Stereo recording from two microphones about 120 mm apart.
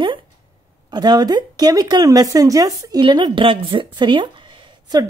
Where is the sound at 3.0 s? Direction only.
40° right (ahead or behind).